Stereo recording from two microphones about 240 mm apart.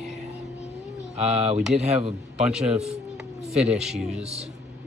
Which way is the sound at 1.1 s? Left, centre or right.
Right.